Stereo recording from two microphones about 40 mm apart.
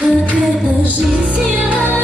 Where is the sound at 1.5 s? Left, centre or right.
Right.